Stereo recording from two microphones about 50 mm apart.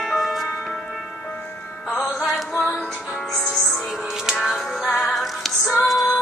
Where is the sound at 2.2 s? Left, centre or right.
Centre.